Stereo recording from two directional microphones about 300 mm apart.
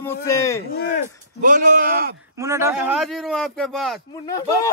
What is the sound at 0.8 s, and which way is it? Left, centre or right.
Speech, left.